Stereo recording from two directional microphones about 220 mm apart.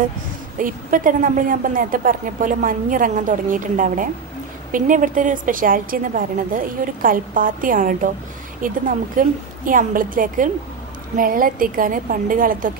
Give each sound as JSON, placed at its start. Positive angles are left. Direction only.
{"t": 0.6, "sound": "a woman's voice", "side_deg": -40}